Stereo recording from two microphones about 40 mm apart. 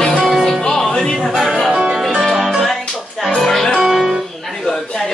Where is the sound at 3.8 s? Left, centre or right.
Centre.